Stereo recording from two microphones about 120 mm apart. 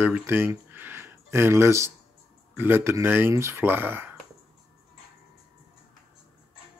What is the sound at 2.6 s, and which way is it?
Speech, 20° right (ahead or behind).